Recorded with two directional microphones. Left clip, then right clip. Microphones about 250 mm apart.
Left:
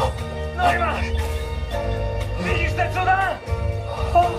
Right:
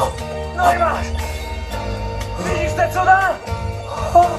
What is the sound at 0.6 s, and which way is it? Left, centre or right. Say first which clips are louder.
Music: right 5 dB; right.